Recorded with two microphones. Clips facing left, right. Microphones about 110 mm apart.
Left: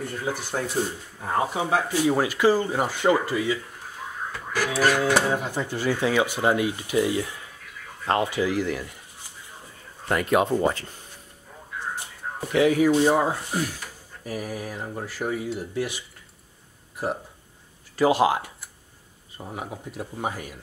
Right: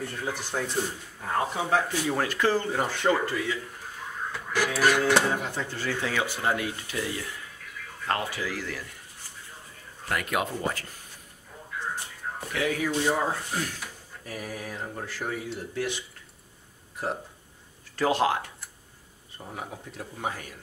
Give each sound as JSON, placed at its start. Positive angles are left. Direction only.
{"t": 0.0, "sound": "speech", "side_deg": 5}
{"t": 10.0, "sound": "speech", "side_deg": 30}
{"t": 12.5, "sound": "speech", "side_deg": 20}
{"t": 17.9, "sound": "speech", "side_deg": 10}